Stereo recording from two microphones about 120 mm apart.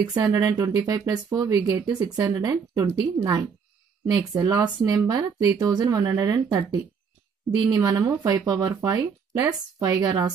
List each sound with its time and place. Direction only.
0.1 s speech: 30° right (ahead or behind)